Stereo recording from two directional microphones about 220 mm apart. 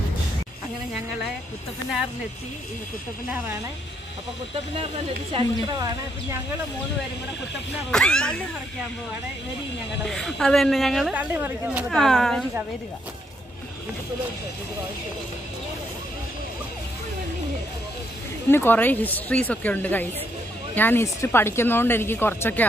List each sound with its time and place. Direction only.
5.3 s speech: 20° right (ahead or behind)
7.9 s a woman's voice: 5° left (ahead or behind)
10.0 s a woman's voice: centre (ahead or behind)
18.5 s speech: 10° left (ahead or behind)